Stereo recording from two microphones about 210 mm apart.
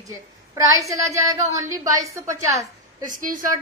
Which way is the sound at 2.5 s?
40° right (ahead or behind).